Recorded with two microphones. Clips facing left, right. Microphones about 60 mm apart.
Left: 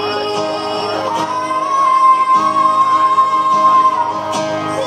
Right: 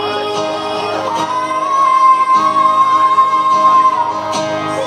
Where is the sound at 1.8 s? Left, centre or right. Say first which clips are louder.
Right 1 dB; right.